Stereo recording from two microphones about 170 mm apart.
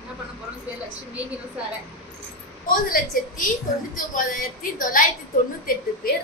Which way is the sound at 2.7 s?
55° left (ahead or behind).